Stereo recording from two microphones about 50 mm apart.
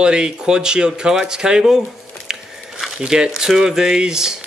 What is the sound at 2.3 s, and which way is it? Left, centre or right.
Biting, centre.